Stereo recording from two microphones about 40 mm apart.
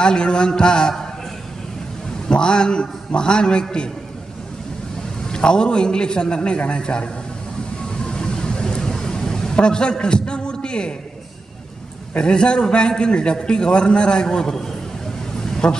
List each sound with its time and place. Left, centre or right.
0.0 s a man's voice: left
2.2 s a man's voice: left
5.3 s a man's voice: left
8.0 s vehicle: centre
12.2 s a man's voice: left
15.5 s vehicle: centre